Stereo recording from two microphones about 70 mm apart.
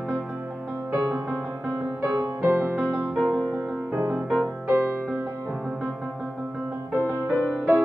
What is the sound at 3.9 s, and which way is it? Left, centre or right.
Music, right.